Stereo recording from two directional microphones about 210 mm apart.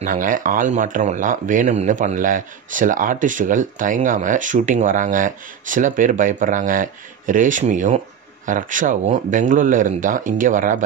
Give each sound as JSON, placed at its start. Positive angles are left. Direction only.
{"t": 0.0, "sound": "a man's voice", "side_deg": -40}